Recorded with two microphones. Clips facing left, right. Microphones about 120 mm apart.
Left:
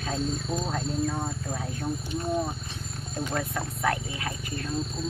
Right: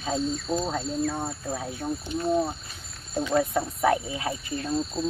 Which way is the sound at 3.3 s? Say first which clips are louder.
Right 9 dB; 15° right (ahead or behind).